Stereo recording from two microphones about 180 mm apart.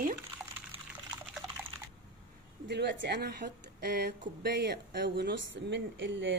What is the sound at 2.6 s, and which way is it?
A woman's voice, 75° right (ahead or behind).